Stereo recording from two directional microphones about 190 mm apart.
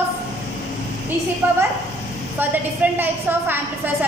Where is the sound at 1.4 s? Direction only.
10° right (ahead or behind).